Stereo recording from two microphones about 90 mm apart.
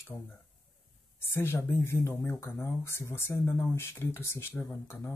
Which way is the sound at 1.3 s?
30° left (ahead or behind).